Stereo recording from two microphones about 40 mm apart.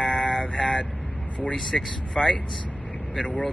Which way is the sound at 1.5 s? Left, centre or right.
Centre.